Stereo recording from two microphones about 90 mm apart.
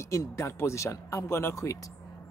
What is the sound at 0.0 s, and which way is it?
Speech, 35° left (ahead or behind).